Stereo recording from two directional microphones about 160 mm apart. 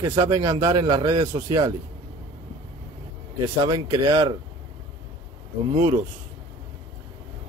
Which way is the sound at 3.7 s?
25° right (ahead or behind).